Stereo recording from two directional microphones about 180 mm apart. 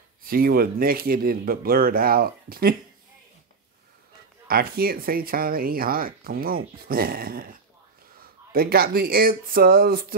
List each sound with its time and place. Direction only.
0.2 s speech: 55° right (ahead or behind)
4.5 s speech: 55° right (ahead or behind)